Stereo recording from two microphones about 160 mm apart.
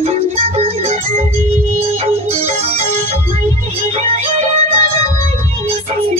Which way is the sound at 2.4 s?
40° right (ahead or behind).